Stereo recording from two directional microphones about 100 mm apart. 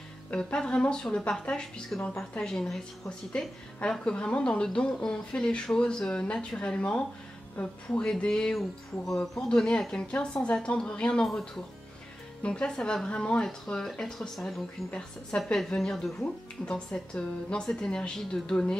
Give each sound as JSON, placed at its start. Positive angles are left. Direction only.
{"t": 0.3, "sound": "speech", "side_deg": 10}
{"t": 8.1, "sound": "speech", "side_deg": 5}
{"t": 12.4, "sound": "speech", "side_deg": 10}